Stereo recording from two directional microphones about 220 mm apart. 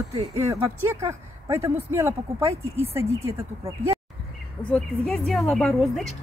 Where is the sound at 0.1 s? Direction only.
25° right (ahead or behind).